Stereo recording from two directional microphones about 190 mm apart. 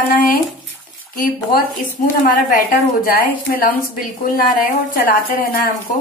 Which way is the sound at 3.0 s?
50° left (ahead or behind).